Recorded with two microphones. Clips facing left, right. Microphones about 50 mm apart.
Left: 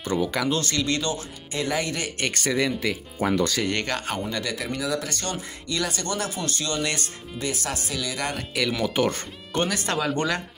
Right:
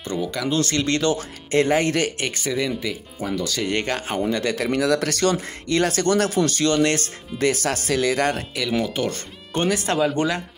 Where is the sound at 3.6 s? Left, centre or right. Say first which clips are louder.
Right 3 dB; right.